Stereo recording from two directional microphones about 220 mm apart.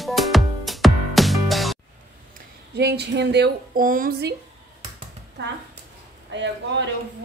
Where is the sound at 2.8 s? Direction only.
50° right (ahead or behind).